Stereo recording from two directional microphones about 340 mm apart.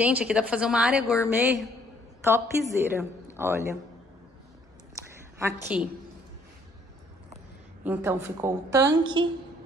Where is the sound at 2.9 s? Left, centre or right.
Centre.